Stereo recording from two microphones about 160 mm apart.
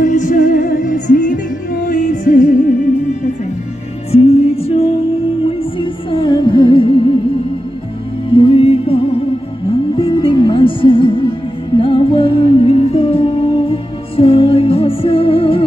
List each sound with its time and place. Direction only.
0.0 s music: 55° left (ahead or behind)
4.1 s music: 40° left (ahead or behind)
8.4 s music: 35° left (ahead or behind)